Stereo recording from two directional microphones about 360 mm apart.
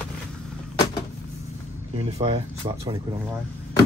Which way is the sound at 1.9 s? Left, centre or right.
Centre.